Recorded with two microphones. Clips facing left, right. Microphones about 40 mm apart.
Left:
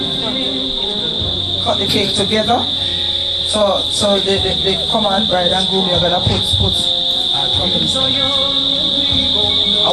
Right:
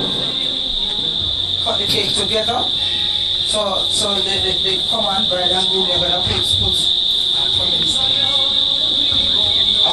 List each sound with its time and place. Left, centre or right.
3.5 s speech: left
5.5 s speech: left
5.9 s speech: left